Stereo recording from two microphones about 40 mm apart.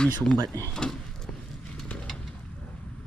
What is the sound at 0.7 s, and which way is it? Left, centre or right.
Speech, centre.